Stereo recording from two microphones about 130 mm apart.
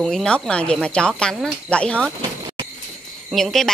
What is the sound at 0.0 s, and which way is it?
A woman's voice, 5° left (ahead or behind).